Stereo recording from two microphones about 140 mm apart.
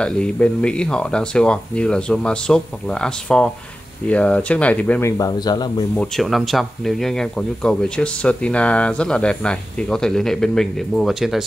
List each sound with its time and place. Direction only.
0.0 s speech: 10° left (ahead or behind)
5.1 s speech: 30° left (ahead or behind)
5.9 s speech: centre (ahead or behind)